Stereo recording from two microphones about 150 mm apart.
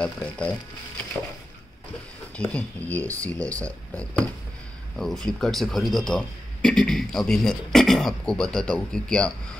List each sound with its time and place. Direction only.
0.0 s speech: 10° left (ahead or behind)
2.3 s a man's voice: 10° left (ahead or behind)